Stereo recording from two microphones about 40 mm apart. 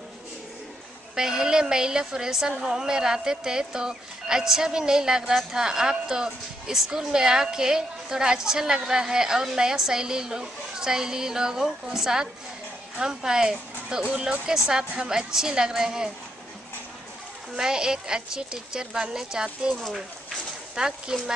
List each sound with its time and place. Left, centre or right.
1.1 s speech: centre
17.6 s speech: centre
20.7 s speech: centre